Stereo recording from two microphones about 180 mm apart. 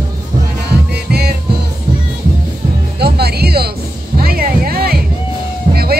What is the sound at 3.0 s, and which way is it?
Music, 60° right (ahead or behind).